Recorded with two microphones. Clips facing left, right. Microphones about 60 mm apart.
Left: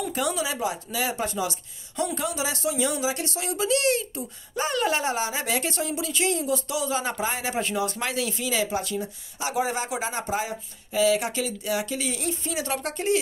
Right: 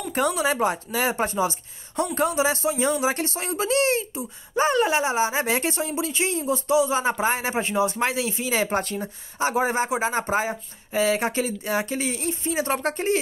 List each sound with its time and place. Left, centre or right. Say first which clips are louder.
0.1 s speech: right 4 dB; right
8.6 s speech: right 2 dB; right